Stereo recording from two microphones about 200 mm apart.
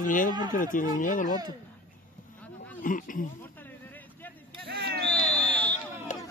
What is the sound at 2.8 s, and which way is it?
Speech, 40° left (ahead or behind).